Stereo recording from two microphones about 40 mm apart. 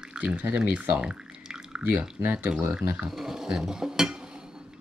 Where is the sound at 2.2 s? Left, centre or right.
Right.